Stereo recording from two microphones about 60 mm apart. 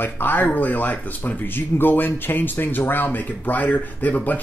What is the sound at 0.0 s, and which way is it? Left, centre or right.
Speech, left.